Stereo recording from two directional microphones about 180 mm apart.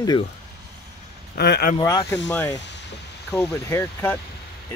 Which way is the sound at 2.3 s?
15° left (ahead or behind).